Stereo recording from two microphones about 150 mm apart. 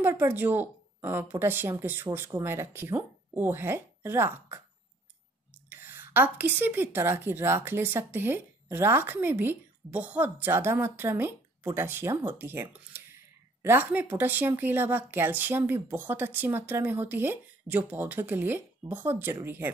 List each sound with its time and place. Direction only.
0.0 s speech: 15° right (ahead or behind)
5.7 s speech: 15° right (ahead or behind)